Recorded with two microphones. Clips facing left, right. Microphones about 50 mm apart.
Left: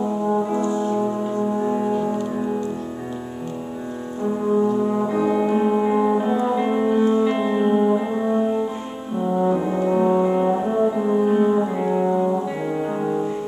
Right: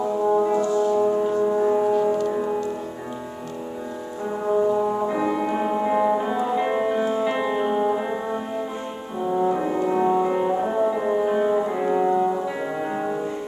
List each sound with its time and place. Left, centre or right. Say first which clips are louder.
0.6 s music: right 1 dB; left
0.9 s music: right 2 dB; centre
4.5 s brass instrument: even; centre